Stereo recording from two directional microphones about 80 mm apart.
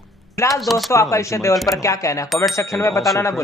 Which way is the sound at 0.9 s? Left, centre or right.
Left.